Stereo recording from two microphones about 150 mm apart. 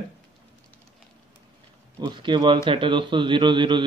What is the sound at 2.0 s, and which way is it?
Speech, 30° right (ahead or behind).